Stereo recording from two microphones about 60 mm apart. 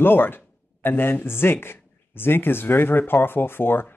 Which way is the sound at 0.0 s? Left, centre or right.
Left.